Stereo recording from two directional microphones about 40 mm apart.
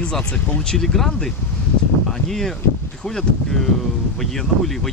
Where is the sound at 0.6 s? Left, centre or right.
Centre.